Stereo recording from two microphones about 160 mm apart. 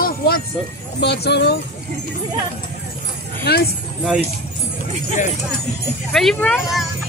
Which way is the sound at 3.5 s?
90° left.